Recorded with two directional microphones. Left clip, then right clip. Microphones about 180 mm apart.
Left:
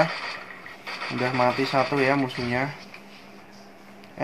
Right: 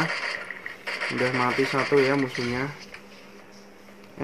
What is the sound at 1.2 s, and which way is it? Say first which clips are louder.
Speech: left 2 dB; centre (ahead or behind).